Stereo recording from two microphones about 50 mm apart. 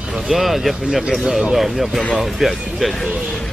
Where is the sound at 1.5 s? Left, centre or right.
Centre.